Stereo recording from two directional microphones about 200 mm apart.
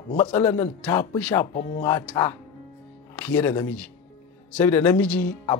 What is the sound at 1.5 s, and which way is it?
Speech, 30° left (ahead or behind).